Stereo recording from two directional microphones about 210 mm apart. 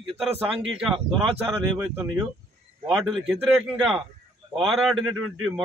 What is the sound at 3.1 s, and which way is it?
A man's voice, centre (ahead or behind).